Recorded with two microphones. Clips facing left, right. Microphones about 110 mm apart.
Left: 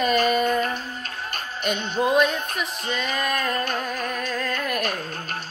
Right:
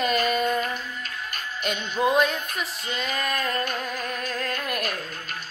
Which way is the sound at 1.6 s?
30° left (ahead or behind).